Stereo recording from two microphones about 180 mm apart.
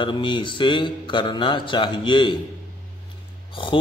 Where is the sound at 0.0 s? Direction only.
25° left (ahead or behind).